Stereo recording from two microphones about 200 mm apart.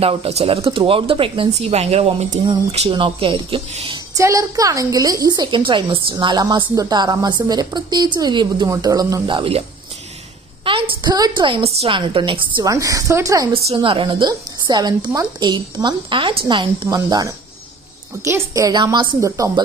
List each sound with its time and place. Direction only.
0.0 s speech: 30° right (ahead or behind)
10.6 s a woman's voice: 25° right (ahead or behind)